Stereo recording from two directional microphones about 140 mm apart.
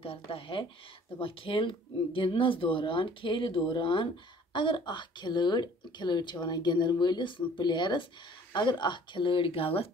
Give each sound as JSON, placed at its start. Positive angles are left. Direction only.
{"t": 0.0, "sound": "speech", "side_deg": 40}